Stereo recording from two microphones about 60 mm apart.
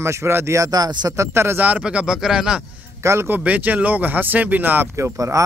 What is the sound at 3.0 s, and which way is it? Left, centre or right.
Speech, right.